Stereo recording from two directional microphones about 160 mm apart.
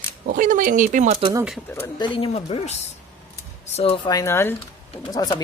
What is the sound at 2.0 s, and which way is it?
Speech, 35° left (ahead or behind).